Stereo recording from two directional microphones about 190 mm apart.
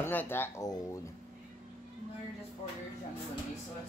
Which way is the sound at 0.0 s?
10° left (ahead or behind).